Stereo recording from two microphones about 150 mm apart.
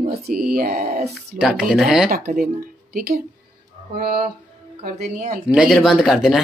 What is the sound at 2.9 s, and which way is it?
Speech, 80° right.